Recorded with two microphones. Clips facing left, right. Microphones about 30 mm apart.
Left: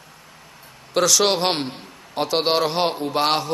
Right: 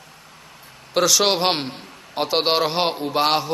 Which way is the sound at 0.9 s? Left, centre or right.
Centre.